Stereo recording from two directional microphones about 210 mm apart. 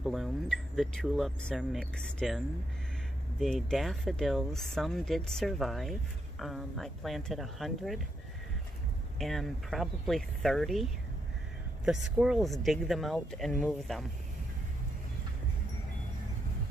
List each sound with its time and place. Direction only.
0.0 s speech: centre (ahead or behind)
9.2 s speech: centre (ahead or behind)